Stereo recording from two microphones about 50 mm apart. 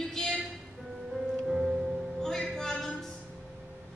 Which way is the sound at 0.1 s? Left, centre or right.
Centre.